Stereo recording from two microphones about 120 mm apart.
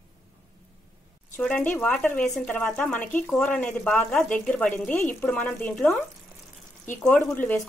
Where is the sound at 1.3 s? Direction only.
10° left (ahead or behind).